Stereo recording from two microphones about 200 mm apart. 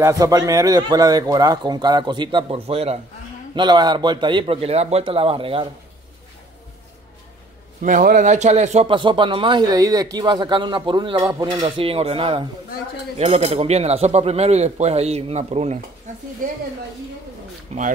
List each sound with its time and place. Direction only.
0.0 s speech: 15° right (ahead or behind)
7.8 s speech: 40° right (ahead or behind)
17.7 s speech: 35° right (ahead or behind)